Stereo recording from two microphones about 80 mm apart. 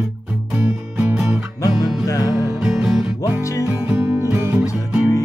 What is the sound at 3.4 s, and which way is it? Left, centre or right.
Music, left.